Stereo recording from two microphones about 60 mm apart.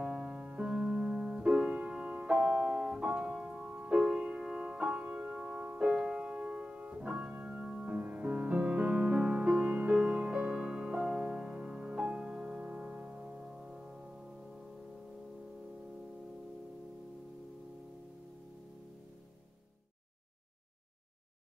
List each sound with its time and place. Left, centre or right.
0.0 s music: right
3.1 s music: right
5.8 s piano: centre
7.9 s music: right; by 14.7 s centre